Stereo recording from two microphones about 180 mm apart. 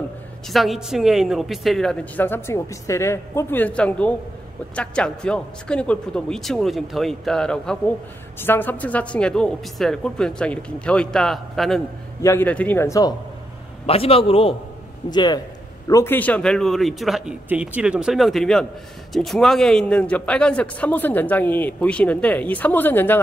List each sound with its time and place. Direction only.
0.5 s a man's voice: centre (ahead or behind)
12.2 s a man's voice: 15° left (ahead or behind)
13.8 s a man's voice: 30° left (ahead or behind); by 23.2 s 10° left (ahead or behind)